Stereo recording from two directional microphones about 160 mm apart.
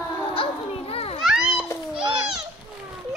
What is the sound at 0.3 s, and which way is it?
Children playing, 35° left (ahead or behind).